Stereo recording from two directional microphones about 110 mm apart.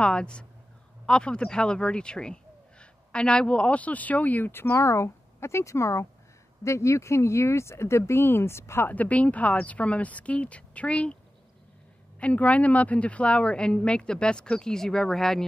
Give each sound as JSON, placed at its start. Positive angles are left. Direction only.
{"t": 0.0, "sound": "speech", "side_deg": 10}
{"t": 12.2, "sound": "speech", "side_deg": 10}